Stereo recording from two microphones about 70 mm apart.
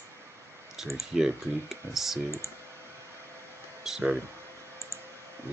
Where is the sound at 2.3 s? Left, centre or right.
Left.